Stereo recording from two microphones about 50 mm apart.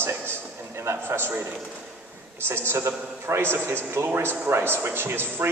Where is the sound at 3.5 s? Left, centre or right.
Right.